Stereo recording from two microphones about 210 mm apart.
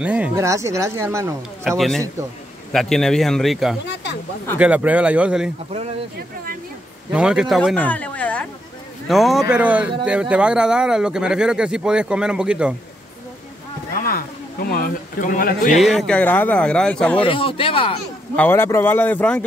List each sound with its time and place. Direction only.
0.0 s speech: 5° right (ahead or behind)
1.8 s speech: centre (ahead or behind)
3.8 s a sound: 55° left (ahead or behind)
4.6 s speech: 5° right (ahead or behind)
7.1 s speech: 5° right (ahead or behind)
14.0 s speech: 45° left (ahead or behind)
15.8 s speech: centre (ahead or behind)
17.2 s speech: 25° left (ahead or behind)
18.3 s a man's voice: 10° left (ahead or behind)